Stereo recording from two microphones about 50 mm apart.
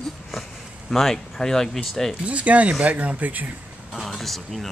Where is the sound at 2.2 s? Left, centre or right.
Right.